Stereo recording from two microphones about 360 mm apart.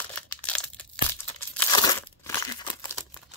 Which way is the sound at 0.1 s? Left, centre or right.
Centre.